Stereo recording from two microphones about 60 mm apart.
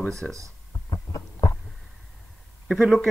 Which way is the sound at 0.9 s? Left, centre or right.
Left.